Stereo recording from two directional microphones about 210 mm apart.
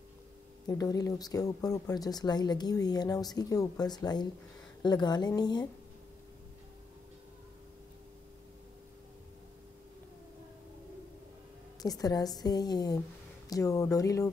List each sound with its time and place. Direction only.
0.7 s a woman's voice: 15° left (ahead or behind)
11.8 s a woman's voice: 15° left (ahead or behind)